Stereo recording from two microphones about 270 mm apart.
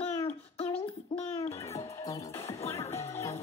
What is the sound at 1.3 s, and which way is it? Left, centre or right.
Speech, left.